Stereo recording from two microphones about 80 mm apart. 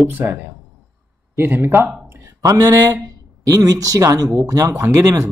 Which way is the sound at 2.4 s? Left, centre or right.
Right.